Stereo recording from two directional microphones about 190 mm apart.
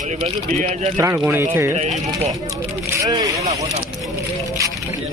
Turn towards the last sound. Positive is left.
turn(degrees=-20)  # may be behind; listen again after turning